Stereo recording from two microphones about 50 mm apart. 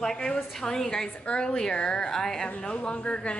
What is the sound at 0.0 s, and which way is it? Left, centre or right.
A woman's voice, centre.